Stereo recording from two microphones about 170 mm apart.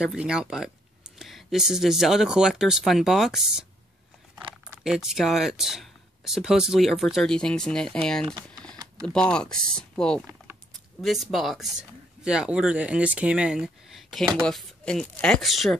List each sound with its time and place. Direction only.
0.0 s speech: 5° right (ahead or behind)
4.6 s speech: 5° right (ahead or behind)